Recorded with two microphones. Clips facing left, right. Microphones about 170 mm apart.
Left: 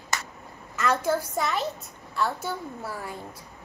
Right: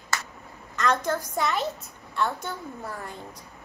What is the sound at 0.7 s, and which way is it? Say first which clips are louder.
A woman's voice: left 1 dB; 5° left (ahead or behind).